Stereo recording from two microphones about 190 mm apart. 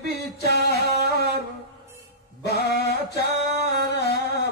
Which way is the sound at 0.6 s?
60° left (ahead or behind).